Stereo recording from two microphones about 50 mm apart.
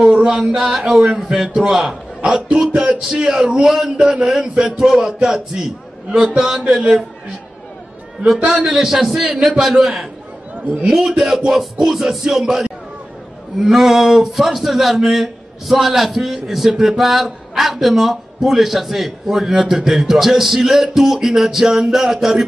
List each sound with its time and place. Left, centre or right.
0.1 s a sound: centre
0.6 s music: centre
1.7 s a man's voice: centre
2.7 s a man's voice: right
3.0 s music: centre
3.9 s a man's voice: right
4.3 s music: centre
8.7 s music: centre
14.3 s a man's voice: centre